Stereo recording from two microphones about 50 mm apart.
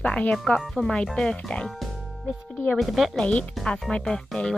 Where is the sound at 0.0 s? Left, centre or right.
Left.